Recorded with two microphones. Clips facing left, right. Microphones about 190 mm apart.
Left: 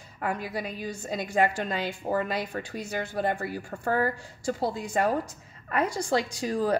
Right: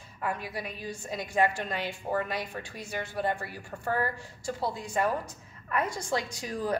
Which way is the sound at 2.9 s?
45° left (ahead or behind).